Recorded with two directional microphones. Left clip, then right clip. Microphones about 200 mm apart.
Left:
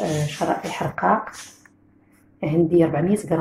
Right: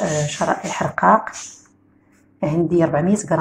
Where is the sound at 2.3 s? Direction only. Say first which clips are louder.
Even; 25° right (ahead or behind).